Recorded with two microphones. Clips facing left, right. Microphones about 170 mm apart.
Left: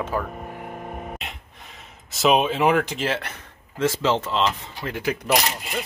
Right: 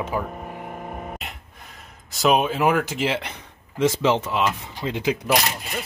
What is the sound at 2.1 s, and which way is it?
A man's voice, centre (ahead or behind).